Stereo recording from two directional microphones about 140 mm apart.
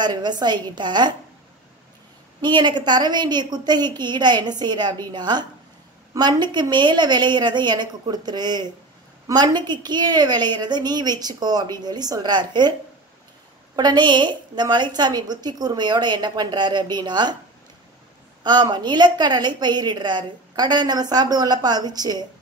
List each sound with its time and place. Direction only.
0.0 s a woman's voice: 30° right (ahead or behind)
2.4 s a woman's voice: 30° right (ahead or behind)
13.7 s a woman's voice: 30° right (ahead or behind)
18.4 s a woman's voice: 30° right (ahead or behind)